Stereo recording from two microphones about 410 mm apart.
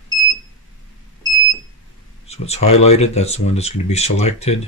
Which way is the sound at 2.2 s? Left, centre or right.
Centre.